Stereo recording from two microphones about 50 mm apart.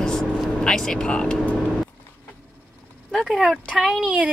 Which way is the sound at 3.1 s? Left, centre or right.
Centre.